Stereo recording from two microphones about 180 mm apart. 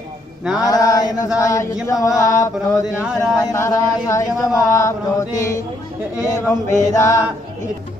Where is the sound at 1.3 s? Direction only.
15° left (ahead or behind).